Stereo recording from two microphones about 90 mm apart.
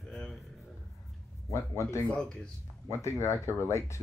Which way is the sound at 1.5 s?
30° left (ahead or behind).